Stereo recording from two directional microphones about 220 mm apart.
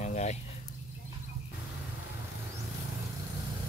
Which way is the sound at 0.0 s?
30° left (ahead or behind).